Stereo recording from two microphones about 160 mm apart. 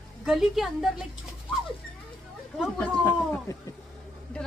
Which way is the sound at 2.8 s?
10° left (ahead or behind).